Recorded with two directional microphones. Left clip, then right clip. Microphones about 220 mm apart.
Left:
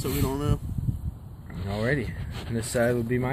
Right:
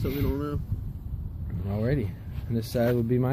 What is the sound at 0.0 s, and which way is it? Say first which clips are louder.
Speech: left 1 dB; 50° left (ahead or behind).